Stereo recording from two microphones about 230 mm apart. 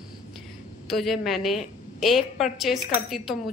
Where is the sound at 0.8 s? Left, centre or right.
Centre.